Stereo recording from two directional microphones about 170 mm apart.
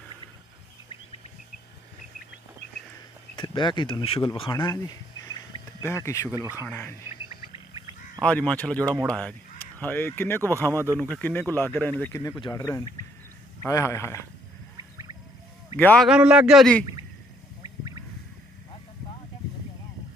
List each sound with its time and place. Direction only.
3.3 s speech: 25° left (ahead or behind)
6.3 s speech: 15° right (ahead or behind)
6.6 s speech: 10° left (ahead or behind)
8.2 s speech: 10° left (ahead or behind)
12.2 s speech: 20° left (ahead or behind)
14.8 s music: 20° right (ahead or behind)
15.8 s speech: 10° left (ahead or behind)
16.1 s a man's voice: 5° right (ahead or behind)